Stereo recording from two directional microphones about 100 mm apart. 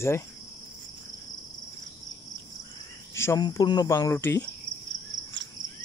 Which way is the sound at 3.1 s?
25° left (ahead or behind).